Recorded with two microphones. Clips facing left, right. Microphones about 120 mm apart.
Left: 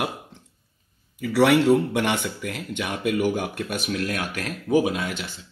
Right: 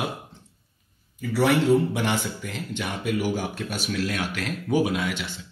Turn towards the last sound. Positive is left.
turn(degrees=45)  # may be behind; listen again after turning